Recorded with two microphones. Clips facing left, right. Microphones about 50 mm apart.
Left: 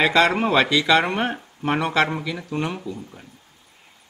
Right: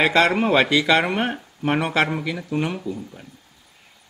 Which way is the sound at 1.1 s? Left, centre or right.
Centre.